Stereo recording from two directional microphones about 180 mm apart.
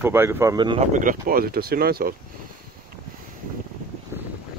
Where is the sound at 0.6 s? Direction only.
25° right (ahead or behind).